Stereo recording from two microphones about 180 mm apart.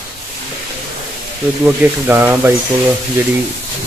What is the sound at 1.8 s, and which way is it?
Speech, 10° right (ahead or behind).